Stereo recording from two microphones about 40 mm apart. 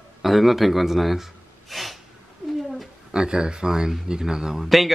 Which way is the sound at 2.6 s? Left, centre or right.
Centre.